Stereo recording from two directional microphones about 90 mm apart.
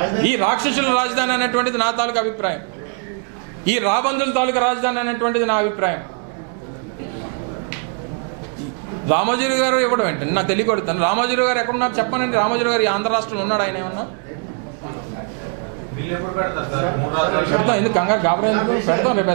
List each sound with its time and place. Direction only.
0.0 s a man's voice: 15° right (ahead or behind)
3.6 s a man's voice: 15° right (ahead or behind)
9.0 s a man's voice: 15° right (ahead or behind)
16.1 s a man's voice: 20° right (ahead or behind)